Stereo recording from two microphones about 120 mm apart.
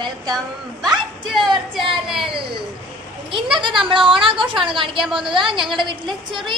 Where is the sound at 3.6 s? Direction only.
45° right (ahead or behind).